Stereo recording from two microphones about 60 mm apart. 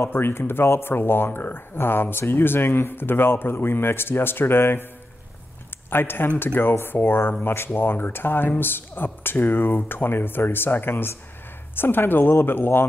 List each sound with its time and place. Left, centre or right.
0.2 s speech: left
5.9 s speech: left